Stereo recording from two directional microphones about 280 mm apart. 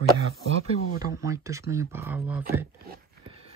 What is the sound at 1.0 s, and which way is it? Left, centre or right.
Speech, centre.